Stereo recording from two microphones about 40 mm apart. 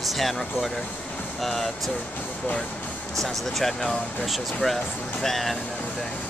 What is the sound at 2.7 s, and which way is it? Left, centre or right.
Vehicle, left.